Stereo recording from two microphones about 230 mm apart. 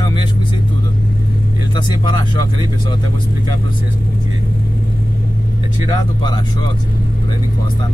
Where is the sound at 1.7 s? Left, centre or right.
Centre.